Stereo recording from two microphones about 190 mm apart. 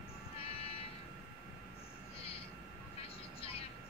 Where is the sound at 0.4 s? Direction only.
30° left (ahead or behind).